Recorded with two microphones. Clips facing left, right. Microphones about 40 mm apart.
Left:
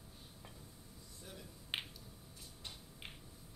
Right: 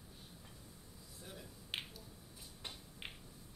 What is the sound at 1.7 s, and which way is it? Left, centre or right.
Finger snapping, left.